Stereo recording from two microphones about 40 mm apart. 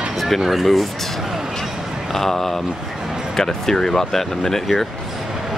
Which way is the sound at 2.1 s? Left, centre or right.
Centre.